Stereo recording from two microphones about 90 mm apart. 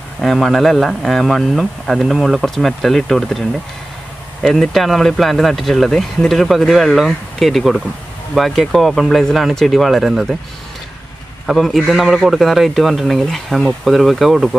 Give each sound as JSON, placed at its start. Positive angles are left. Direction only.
{"t": 0.2, "sound": "speech", "side_deg": 0}
{"t": 11.4, "sound": "speech", "side_deg": 0}